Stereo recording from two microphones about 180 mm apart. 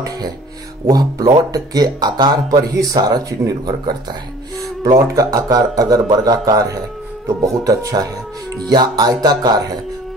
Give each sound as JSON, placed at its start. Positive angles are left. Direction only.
{"t": 0.8, "sound": "speech", "side_deg": -20}